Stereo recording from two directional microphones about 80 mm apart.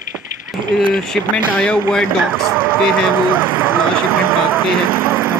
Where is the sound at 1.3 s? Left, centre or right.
Centre.